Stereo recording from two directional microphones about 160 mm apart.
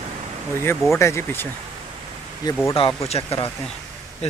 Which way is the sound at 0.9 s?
15° left (ahead or behind).